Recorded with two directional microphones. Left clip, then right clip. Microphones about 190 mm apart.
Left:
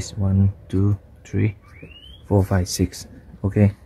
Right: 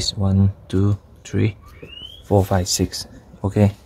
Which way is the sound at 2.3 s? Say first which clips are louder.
Right 4 dB; 10° left (ahead or behind).